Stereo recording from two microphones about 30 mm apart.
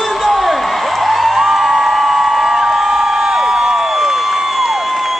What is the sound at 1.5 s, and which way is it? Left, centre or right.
Music, centre.